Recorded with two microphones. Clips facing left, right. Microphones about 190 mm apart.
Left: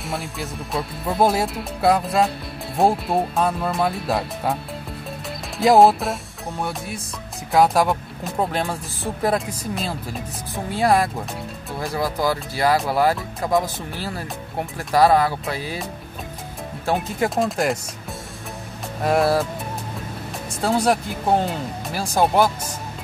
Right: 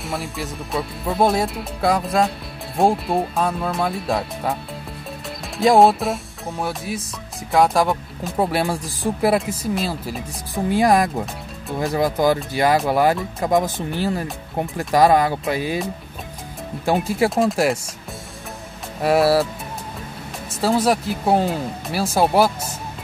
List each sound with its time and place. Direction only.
0.0 s speech: centre (ahead or behind)
5.6 s speech: centre (ahead or behind)
10.8 s speech: 15° right (ahead or behind)
16.9 s speech: centre (ahead or behind)
19.0 s speech: 5° right (ahead or behind)
20.6 s speech: centre (ahead or behind)